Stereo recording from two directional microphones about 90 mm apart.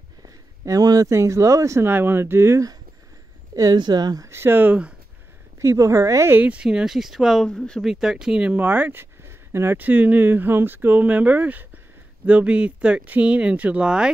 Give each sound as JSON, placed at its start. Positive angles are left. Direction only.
{"t": 0.7, "sound": "speech", "side_deg": -40}
{"t": 3.5, "sound": "speech", "side_deg": -50}
{"t": 4.3, "sound": "speech", "side_deg": -25}
{"t": 5.6, "sound": "speech", "side_deg": -35}
{"t": 6.3, "sound": "speech", "side_deg": -15}
{"t": 7.4, "sound": "speech", "side_deg": 10}
{"t": 7.8, "sound": "speech", "side_deg": -5}